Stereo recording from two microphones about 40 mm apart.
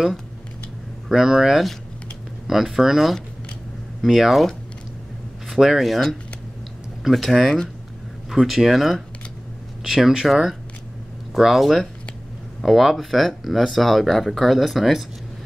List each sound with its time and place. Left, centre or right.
1.0 s speech: centre
5.5 s speech: centre
7.1 s speech: centre
8.3 s speech: centre